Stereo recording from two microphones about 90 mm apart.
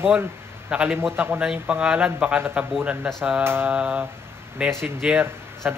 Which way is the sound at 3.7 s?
15° right (ahead or behind).